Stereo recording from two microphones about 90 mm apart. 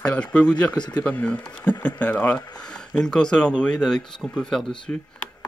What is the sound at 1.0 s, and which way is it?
Speech, 15° left (ahead or behind).